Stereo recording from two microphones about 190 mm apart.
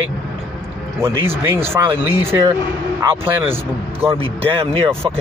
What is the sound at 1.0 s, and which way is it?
Speech, 15° right (ahead or behind).